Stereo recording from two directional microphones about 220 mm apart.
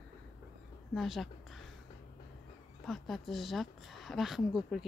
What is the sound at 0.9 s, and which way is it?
Speech, centre (ahead or behind).